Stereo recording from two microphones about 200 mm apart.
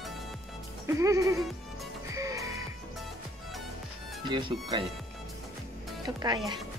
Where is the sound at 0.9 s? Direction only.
15° right (ahead or behind).